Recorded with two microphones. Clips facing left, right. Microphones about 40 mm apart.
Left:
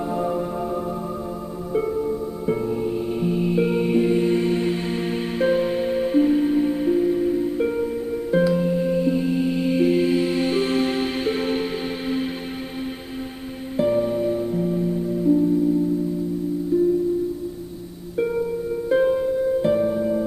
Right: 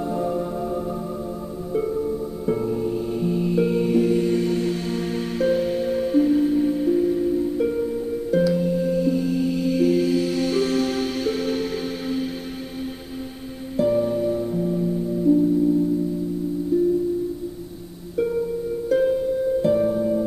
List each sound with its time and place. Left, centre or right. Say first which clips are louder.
0.1 s music: left 1 dB; centre
13.7 s music: even; left
16.7 s music: left 1 dB; left
18.1 s music: even; left